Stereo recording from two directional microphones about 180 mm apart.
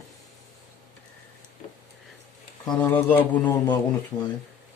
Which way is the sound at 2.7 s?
10° left (ahead or behind).